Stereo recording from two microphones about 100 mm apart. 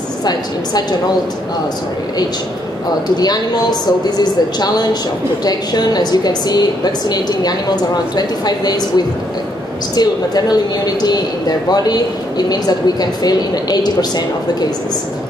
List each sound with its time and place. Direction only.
0.2 s a woman's voice: 40° left (ahead or behind)
3.2 s a woman's voice: 40° left (ahead or behind)